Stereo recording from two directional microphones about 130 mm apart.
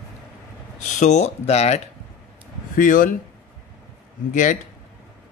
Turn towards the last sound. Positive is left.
turn(degrees=75)  # may be behind; listen again after turning